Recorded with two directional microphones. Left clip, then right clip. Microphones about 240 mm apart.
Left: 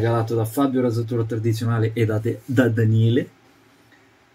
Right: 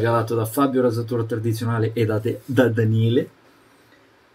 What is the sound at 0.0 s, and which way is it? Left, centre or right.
Speech, centre.